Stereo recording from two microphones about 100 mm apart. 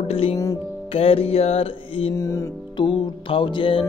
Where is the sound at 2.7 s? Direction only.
55° left (ahead or behind).